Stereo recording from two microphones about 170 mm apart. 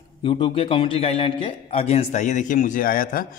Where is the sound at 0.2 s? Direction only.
30° left (ahead or behind).